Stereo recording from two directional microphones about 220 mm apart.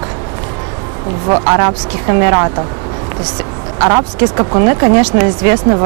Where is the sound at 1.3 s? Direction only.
20° right (ahead or behind).